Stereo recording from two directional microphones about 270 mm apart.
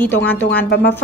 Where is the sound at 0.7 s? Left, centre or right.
Left.